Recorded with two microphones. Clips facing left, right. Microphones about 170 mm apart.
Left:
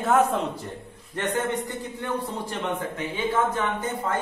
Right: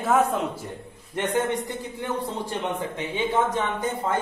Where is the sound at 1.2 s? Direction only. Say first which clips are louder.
Right 2 dB; 15° right (ahead or behind).